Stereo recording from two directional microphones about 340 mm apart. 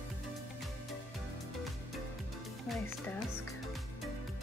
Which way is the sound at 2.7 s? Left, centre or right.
Centre.